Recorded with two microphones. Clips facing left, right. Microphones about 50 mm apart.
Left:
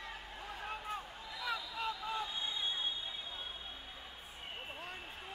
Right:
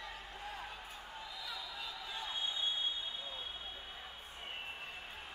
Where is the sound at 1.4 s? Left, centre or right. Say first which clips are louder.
Left 10 dB; left.